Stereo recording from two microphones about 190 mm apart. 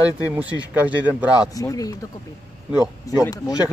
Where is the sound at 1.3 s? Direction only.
20° left (ahead or behind).